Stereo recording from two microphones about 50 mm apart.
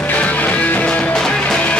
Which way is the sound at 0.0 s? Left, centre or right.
Left.